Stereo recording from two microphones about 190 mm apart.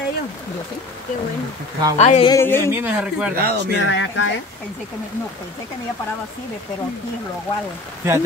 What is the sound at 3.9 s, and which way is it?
Speech, 75° left (ahead or behind).